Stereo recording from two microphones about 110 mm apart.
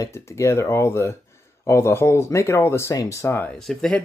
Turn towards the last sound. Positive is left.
turn(degrees=5)  # may be behind; listen again after turning